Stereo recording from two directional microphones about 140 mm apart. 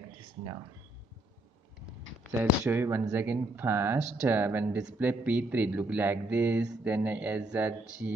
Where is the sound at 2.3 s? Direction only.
15° right (ahead or behind).